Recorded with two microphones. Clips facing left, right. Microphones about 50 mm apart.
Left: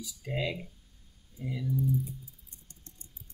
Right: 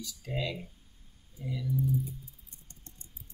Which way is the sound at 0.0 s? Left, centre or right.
Centre.